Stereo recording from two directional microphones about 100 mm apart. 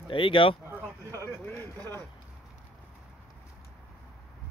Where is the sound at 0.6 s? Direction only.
20° right (ahead or behind).